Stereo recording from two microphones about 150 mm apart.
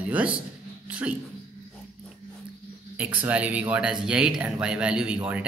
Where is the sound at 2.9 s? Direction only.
10° right (ahead or behind).